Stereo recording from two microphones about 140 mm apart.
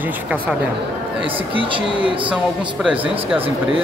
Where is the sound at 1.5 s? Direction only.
40° right (ahead or behind).